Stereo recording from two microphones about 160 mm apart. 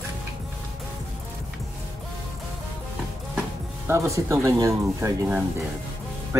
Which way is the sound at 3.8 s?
15° right (ahead or behind).